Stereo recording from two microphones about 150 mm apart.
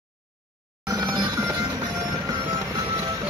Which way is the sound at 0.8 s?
25° right (ahead or behind).